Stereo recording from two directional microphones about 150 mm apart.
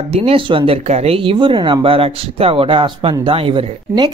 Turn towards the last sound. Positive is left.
turn(degrees=-35)  # may be behind; listen again after turning